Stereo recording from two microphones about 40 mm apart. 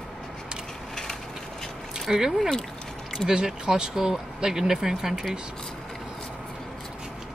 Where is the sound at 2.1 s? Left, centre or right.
Centre.